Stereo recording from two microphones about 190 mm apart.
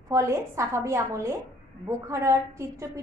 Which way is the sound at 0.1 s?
15° right (ahead or behind).